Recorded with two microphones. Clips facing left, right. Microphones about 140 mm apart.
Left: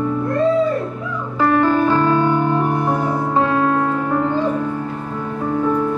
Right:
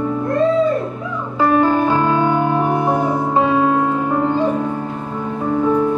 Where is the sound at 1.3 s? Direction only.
15° right (ahead or behind).